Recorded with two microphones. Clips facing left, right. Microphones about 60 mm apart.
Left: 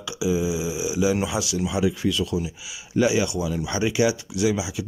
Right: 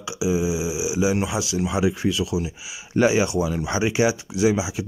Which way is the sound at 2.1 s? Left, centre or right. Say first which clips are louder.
Right 1 dB; centre.